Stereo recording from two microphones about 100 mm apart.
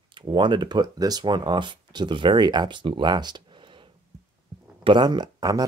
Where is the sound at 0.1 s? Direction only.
55° right (ahead or behind).